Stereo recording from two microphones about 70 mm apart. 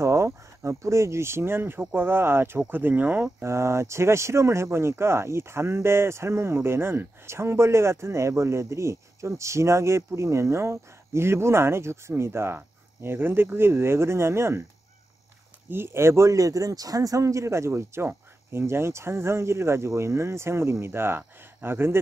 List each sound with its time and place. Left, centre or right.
0.0 s speech: right
3.4 s speech: right
15.7 s speech: right